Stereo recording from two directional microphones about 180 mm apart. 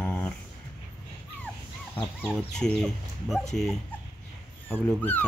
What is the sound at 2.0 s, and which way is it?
Speech, 10° left (ahead or behind).